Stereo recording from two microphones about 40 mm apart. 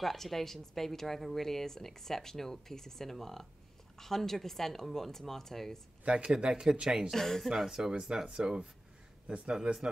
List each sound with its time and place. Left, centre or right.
0.0 s a woman's voice: centre
6.0 s speech: right
7.1 s a woman's voice: centre
7.9 s speech: right
8.2 s speech: centre
9.3 s speech: right